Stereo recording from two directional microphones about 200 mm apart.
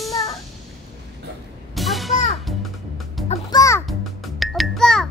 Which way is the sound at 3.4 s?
15° left (ahead or behind).